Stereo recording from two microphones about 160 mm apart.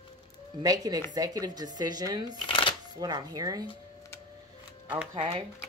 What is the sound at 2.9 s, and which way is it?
Speech, 25° right (ahead or behind).